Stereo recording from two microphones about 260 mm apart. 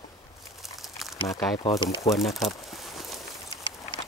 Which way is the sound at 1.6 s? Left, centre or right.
Centre.